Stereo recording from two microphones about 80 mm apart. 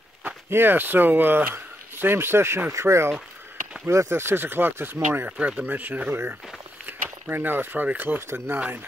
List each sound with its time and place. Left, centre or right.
0.5 s speech: right
5.4 s speech: centre
8.5 s speech: right